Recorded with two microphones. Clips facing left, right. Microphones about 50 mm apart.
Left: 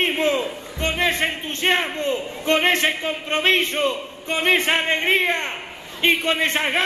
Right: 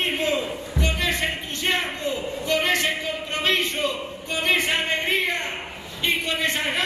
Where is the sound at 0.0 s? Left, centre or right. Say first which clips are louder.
Left 3 dB; left.